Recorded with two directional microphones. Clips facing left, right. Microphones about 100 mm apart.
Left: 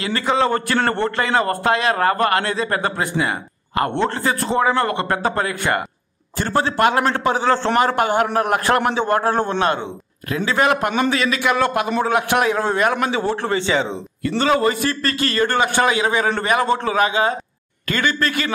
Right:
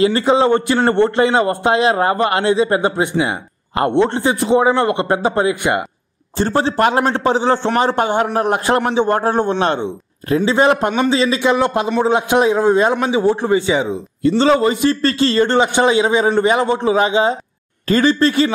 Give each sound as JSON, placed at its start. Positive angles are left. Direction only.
{"t": 0.0, "sound": "a man's voice", "side_deg": -30}
{"t": 14.2, "sound": "a man's voice", "side_deg": -25}